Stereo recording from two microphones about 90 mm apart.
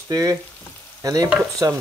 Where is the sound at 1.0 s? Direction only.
45° right (ahead or behind).